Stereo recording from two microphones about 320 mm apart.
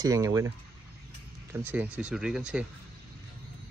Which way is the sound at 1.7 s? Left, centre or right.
Centre.